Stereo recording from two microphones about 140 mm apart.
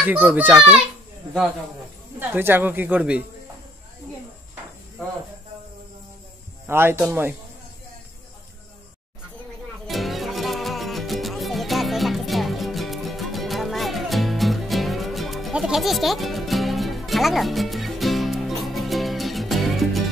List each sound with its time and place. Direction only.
0.0 s speech: 10° right (ahead or behind)
2.1 s speech: 15° right (ahead or behind)
6.7 s speech: 15° right (ahead or behind)
9.8 s music: centre (ahead or behind)